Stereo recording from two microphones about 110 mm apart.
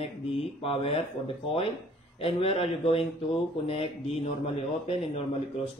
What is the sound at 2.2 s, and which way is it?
Speech, 60° left (ahead or behind).